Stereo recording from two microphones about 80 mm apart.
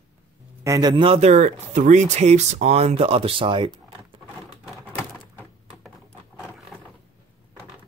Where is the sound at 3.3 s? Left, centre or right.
Right.